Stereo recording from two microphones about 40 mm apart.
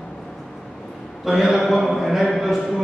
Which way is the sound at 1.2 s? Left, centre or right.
Centre.